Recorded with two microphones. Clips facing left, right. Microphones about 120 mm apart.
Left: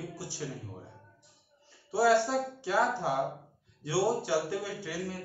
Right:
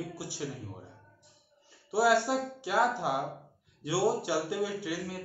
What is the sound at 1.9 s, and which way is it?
Speech, 10° right (ahead or behind).